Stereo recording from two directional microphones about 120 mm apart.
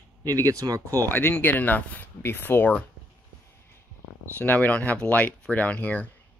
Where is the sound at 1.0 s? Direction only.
15° left (ahead or behind).